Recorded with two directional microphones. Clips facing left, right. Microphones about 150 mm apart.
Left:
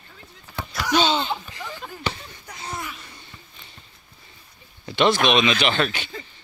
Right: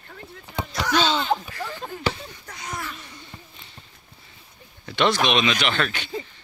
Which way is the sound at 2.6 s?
30° left (ahead or behind).